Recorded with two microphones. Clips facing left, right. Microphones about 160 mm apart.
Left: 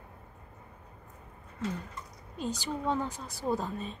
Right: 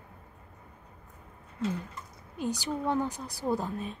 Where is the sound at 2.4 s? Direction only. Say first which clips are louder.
Right 2 dB; 15° right (ahead or behind).